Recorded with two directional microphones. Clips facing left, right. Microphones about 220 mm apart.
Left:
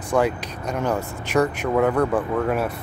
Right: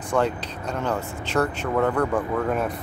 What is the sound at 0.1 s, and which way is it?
Speech, 10° left (ahead or behind).